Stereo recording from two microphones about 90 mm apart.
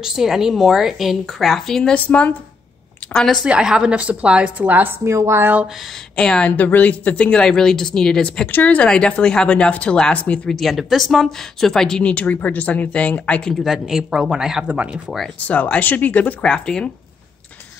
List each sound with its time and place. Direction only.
0.0 s a woman's voice: 5° right (ahead or behind)
3.4 s a woman's voice: 10° right (ahead or behind)
6.1 s a woman's voice: 10° left (ahead or behind)
8.5 s a woman's voice: 20° left (ahead or behind); by 15.1 s 15° right (ahead or behind)
15.4 s a woman's voice: 15° left (ahead or behind)